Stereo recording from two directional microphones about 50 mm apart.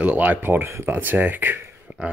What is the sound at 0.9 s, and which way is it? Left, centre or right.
Speech, right.